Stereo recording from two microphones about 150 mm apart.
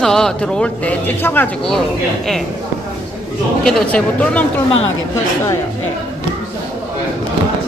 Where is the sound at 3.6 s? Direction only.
5° left (ahead or behind).